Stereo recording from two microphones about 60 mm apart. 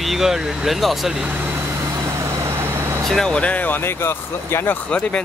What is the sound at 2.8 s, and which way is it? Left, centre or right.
Vehicle, right.